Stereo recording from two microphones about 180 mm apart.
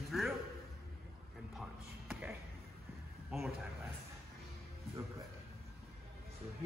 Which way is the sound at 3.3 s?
Centre (ahead or behind).